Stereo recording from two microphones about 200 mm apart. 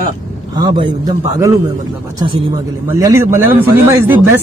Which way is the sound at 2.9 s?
15° right (ahead or behind).